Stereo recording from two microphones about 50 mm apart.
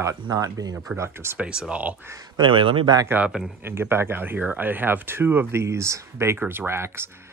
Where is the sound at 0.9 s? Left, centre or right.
Right.